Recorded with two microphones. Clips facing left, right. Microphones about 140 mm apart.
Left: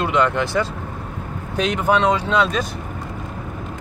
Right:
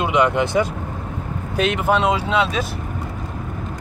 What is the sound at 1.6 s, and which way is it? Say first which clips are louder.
Speech: even; 5° right (ahead or behind).